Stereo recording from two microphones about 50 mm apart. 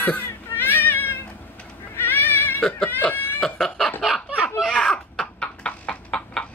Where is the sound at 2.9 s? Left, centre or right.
Left.